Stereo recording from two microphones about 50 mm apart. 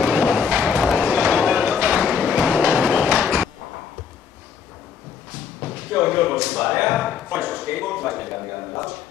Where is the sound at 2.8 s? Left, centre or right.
Right.